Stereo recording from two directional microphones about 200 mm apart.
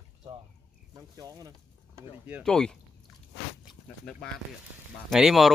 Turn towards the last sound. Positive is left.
turn(degrees=0)  # may be behind; listen again after turning